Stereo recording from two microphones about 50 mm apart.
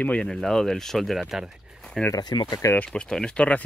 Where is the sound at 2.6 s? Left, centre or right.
Left.